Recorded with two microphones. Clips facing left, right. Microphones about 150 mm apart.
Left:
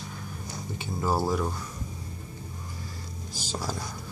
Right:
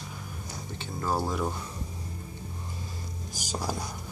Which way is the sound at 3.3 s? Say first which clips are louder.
Even; 15° right (ahead or behind).